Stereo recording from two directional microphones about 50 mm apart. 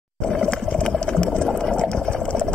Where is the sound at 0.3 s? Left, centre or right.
Centre.